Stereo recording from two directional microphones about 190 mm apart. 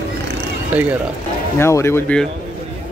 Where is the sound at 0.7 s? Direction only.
10° right (ahead or behind).